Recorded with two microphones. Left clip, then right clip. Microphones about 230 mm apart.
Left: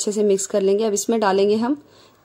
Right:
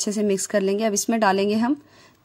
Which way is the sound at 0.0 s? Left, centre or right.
Right.